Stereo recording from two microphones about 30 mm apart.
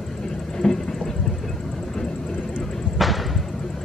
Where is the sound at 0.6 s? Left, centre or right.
Centre.